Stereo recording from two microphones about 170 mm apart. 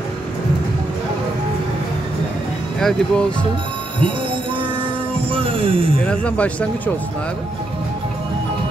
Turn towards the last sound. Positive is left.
turn(degrees=10)  # may be behind; listen again after turning